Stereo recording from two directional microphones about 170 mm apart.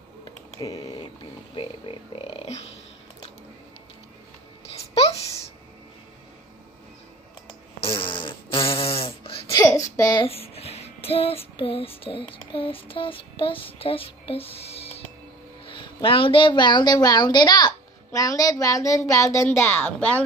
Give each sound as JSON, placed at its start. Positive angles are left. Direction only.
{"t": 0.6, "sound": "speech", "side_deg": 20}
{"t": 1.5, "sound": "speech", "side_deg": 30}
{"t": 7.4, "sound": "fart", "side_deg": 30}
{"t": 9.5, "sound": "a sound", "side_deg": 20}
{"t": 9.9, "sound": "speech", "side_deg": 20}
{"t": 10.2, "sound": "child singing", "side_deg": 35}
{"t": 15.6, "sound": "speech", "side_deg": 30}